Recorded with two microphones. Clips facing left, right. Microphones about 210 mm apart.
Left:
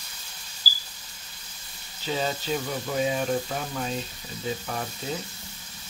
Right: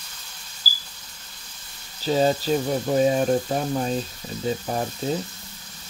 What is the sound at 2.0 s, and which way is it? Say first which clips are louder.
Speech: right 8 dB; 40° right (ahead or behind).